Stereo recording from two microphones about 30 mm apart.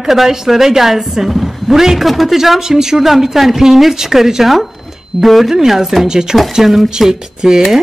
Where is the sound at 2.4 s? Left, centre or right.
Centre.